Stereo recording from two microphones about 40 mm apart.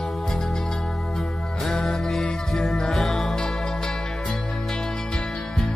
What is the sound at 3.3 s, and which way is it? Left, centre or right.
Music, centre.